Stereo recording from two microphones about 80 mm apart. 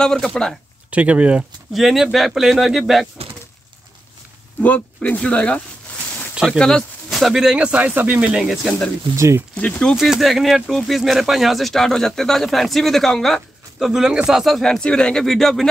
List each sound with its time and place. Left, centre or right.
0.0 s speech: centre
0.8 s speech: centre
1.7 s speech: centre
4.6 s speech: centre
6.6 s snake: centre
7.2 s speech: centre
8.6 s speech: centre
9.1 s speech: right
9.6 s speech: centre
9.9 s speech: centre